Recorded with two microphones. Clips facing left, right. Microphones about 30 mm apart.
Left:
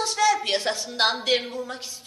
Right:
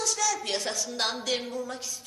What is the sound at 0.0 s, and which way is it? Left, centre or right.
A woman's voice, left.